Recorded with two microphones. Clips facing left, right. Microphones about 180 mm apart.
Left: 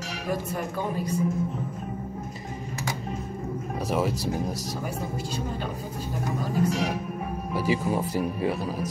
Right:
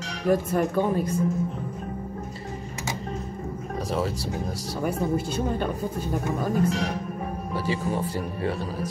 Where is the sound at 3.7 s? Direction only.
10° left (ahead or behind).